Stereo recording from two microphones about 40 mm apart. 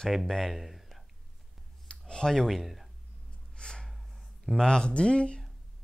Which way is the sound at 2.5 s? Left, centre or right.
Centre.